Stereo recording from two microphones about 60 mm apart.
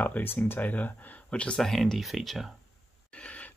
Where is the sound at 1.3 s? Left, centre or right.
Centre.